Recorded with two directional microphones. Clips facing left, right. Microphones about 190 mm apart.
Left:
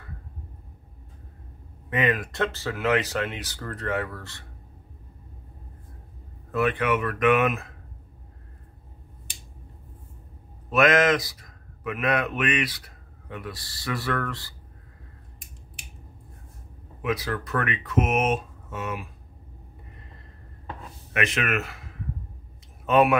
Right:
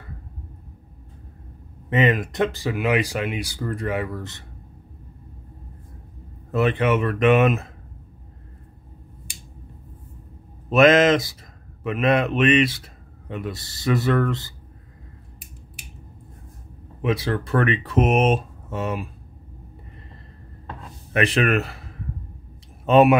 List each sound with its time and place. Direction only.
1.9 s speech: 25° right (ahead or behind)
6.5 s speech: 25° right (ahead or behind)
10.7 s speech: 25° right (ahead or behind)
17.0 s speech: 25° right (ahead or behind)
21.1 s speech: 35° right (ahead or behind)
22.8 s speech: 25° right (ahead or behind)